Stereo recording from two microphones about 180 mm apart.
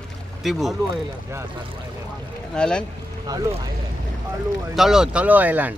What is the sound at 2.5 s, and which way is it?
Speech, 5° left (ahead or behind).